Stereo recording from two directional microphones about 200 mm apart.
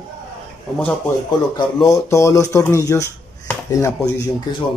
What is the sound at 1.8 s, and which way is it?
Speech, 15° left (ahead or behind).